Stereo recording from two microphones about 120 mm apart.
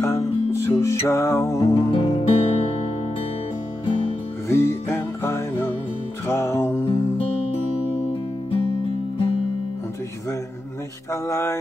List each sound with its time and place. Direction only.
0.0 s music: 20° left (ahead or behind)
1.8 s music: 50° left (ahead or behind)
2.2 s music: 55° left (ahead or behind)
4.5 s music: 25° left (ahead or behind)
11.1 s music: 25° left (ahead or behind)